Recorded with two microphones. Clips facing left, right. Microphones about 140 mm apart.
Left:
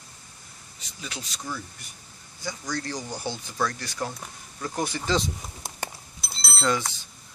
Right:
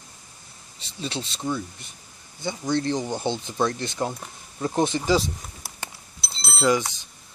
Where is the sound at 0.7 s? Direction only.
30° right (ahead or behind).